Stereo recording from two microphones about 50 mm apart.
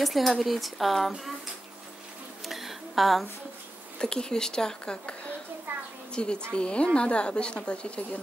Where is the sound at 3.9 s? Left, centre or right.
Centre.